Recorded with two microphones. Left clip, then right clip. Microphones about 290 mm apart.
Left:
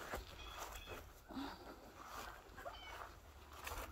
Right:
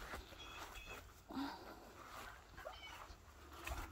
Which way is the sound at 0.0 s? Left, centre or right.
Left.